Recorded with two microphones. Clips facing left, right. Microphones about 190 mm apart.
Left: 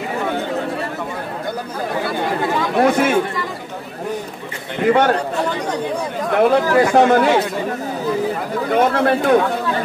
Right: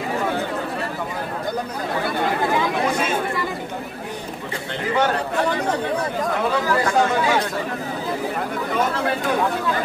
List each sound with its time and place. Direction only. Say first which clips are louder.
2.8 s chatter: left 7 dB; 65° left (ahead or behind)
4.8 s a man's voice: left 7 dB; 65° left (ahead or behind)
6.5 s speech: left 5 dB; 65° left (ahead or behind)
8.7 s speech: left 8 dB; 60° left (ahead or behind)